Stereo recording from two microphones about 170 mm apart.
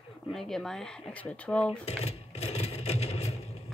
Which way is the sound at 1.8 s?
40° left (ahead or behind).